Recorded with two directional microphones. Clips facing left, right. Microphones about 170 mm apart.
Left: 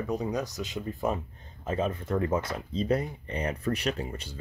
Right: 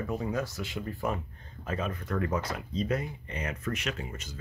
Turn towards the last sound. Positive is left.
turn(degrees=35)  # may be behind; listen again after turning